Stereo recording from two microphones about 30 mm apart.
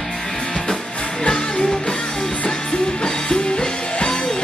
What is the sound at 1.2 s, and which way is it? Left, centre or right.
Music, left.